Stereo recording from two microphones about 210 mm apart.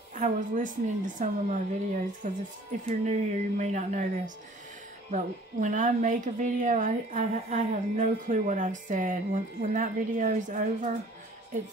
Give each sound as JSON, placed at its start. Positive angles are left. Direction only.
{"t": 0.1, "sound": "a woman's voice", "side_deg": -35}
{"t": 5.1, "sound": "a woman's voice", "side_deg": -35}